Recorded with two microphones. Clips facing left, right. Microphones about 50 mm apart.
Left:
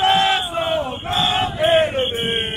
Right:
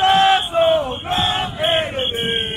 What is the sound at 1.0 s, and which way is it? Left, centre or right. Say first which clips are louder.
Chant: even; right.